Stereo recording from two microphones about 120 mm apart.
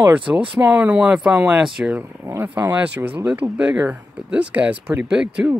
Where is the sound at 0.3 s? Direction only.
10° right (ahead or behind).